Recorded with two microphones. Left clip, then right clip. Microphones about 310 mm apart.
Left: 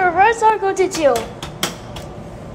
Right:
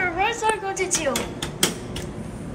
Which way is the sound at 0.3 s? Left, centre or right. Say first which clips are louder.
Left 9 dB; left.